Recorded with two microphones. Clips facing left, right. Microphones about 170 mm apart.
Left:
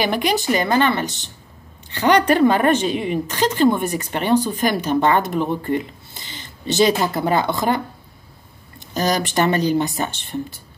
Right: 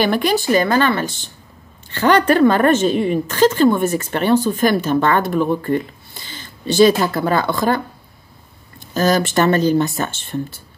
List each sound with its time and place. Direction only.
0.0 s a woman's voice: 15° left (ahead or behind)
2.9 s a woman's voice: 45° right (ahead or behind)
3.3 s a woman's voice: 15° left (ahead or behind)